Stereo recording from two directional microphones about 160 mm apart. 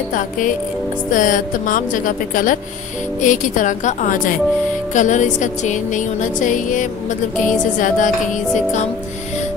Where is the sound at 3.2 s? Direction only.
55° left (ahead or behind).